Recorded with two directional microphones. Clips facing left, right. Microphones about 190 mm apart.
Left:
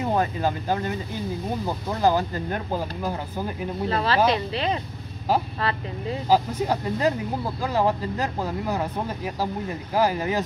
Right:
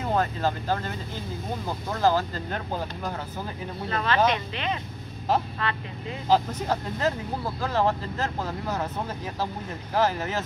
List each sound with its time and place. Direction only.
0.0 s speech: 15° left (ahead or behind)
3.9 s speech: 35° left (ahead or behind)
6.2 s speech: 10° left (ahead or behind)